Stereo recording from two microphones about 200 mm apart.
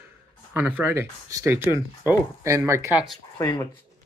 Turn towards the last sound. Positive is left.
turn(degrees=20)  # may be behind; listen again after turning